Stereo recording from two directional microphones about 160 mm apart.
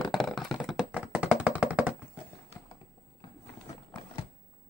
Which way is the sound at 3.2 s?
30° left (ahead or behind).